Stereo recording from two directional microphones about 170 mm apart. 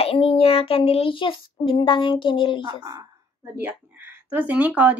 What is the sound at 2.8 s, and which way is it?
Speech, 20° right (ahead or behind).